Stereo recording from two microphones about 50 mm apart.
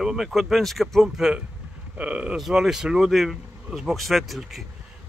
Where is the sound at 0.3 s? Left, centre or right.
Centre.